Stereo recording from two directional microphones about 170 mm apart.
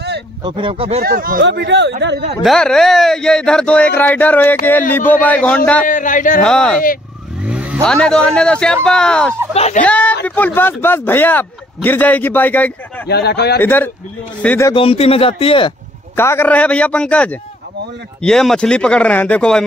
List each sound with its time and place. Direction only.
0.4 s speech: 30° right (ahead or behind)
1.0 s speech: 60° right (ahead or behind); by 2.2 s 90° right
2.4 s speech: 5° left (ahead or behind)
5.9 s speech: 50° left (ahead or behind)
6.4 s speech: 5° left (ahead or behind)
7.4 s vehicle: 5° right (ahead or behind)
7.8 s speech: 5° left (ahead or behind)
9.5 s a man's voice: 35° left (ahead or behind)
9.8 s speech: 10° left (ahead or behind)
13.1 s speech: 75° left (ahead or behind)
13.6 s speech: 10° left (ahead or behind)
14.7 s a man's voice: 35° left (ahead or behind)
16.2 s speech: 15° left (ahead or behind)